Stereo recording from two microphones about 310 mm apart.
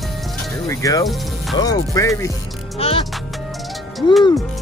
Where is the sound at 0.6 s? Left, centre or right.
Centre.